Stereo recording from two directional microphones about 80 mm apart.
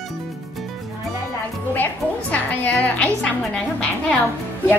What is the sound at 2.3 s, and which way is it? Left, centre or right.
A woman's voice, centre.